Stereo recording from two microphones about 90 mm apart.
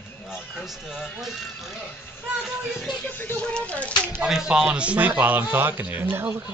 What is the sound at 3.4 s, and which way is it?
Speech, 15° left (ahead or behind).